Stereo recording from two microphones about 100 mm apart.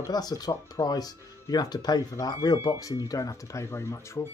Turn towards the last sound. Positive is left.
turn(degrees=30)  # may be behind; listen again after turning